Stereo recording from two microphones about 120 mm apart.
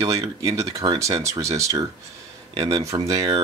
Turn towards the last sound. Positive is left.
turn(degrees=-30)  # may be behind; listen again after turning